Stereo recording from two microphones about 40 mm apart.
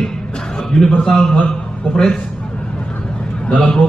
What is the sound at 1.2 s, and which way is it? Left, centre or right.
Speech, left.